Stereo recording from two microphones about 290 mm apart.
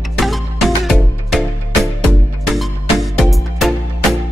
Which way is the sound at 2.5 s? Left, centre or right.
Centre.